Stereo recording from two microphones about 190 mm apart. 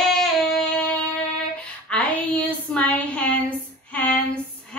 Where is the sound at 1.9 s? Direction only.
5° left (ahead or behind).